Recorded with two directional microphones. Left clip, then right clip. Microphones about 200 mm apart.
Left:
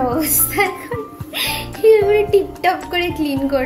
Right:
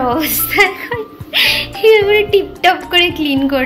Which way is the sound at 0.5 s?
5° left (ahead or behind).